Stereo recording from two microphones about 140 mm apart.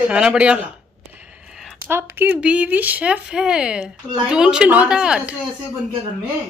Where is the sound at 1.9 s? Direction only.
15° right (ahead or behind).